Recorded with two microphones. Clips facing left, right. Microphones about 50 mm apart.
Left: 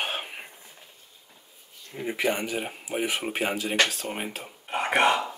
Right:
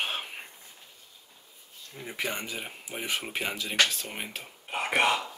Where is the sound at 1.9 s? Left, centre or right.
Left.